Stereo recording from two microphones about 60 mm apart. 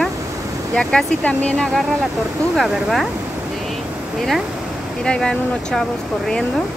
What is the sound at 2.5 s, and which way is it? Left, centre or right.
Speech, centre.